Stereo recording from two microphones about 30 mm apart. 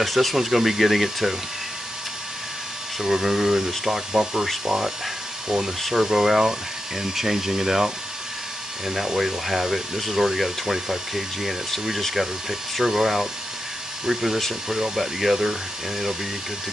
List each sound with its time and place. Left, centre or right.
0.0 s speech: centre
3.0 s speech: centre
4.1 s speech: right
5.9 s speech: centre